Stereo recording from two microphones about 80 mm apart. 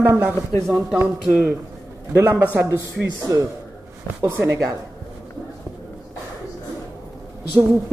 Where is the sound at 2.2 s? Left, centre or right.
Right.